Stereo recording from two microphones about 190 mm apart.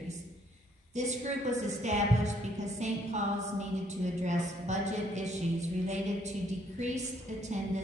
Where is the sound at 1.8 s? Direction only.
35° right (ahead or behind).